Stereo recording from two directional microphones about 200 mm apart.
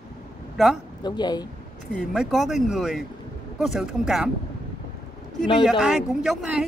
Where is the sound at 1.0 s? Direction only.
20° left (ahead or behind).